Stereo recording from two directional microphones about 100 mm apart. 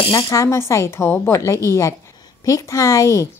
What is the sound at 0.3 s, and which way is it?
A woman's voice, 30° left (ahead or behind).